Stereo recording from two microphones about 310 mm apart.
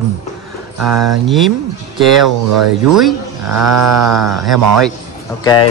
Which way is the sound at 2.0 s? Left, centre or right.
Centre.